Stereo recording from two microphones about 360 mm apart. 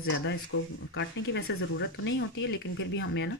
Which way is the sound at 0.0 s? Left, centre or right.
Left.